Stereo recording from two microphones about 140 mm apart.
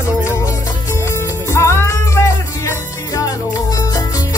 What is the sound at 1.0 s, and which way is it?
Music, 20° left (ahead or behind).